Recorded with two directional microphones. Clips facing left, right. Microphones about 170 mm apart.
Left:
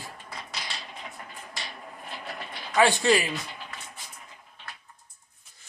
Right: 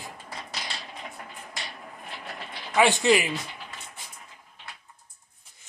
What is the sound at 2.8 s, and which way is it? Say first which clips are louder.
Speech: right 1 dB; 20° right (ahead or behind).